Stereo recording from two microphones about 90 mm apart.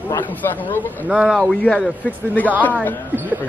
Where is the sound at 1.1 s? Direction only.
10° right (ahead or behind).